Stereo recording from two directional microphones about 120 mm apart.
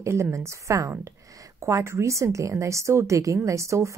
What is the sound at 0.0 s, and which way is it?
Speech, 25° right (ahead or behind).